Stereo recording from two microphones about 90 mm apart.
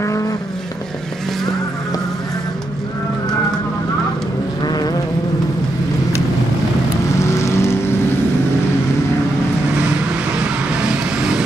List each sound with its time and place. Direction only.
0.0 s vehicle: 35° left (ahead or behind)
4.6 s a sound: 50° left (ahead or behind)
7.2 s vehicle: 30° left (ahead or behind)
10.7 s vehicle: 10° right (ahead or behind)